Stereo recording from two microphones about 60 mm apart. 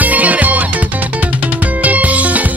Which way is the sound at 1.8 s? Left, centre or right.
Right.